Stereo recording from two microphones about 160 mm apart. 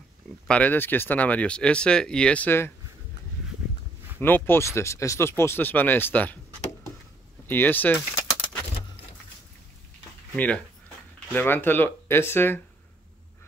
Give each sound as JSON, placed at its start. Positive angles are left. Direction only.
{"t": 0.5, "sound": "speech", "side_deg": 10}
{"t": 4.2, "sound": "speech", "side_deg": 15}
{"t": 7.4, "sound": "speech", "side_deg": 10}
{"t": 10.3, "sound": "speech", "side_deg": 10}